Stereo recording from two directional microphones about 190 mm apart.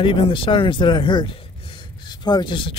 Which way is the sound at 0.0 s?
25° left (ahead or behind).